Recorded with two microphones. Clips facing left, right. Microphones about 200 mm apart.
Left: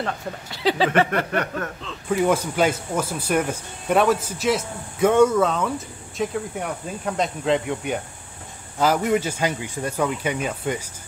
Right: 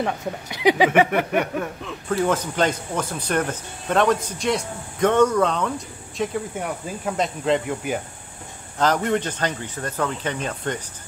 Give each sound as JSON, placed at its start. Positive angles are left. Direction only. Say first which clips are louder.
{"t": 0.0, "sound": "speech", "louder": "right 3 dB", "side_deg": -15}
{"t": 2.0, "sound": "speech", "louder": "left 2 dB", "side_deg": 10}